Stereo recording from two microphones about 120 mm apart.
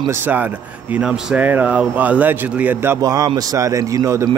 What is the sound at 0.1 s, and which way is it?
A man's voice, 15° right (ahead or behind).